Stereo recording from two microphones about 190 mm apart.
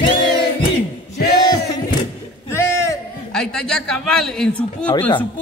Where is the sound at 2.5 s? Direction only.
15° left (ahead or behind).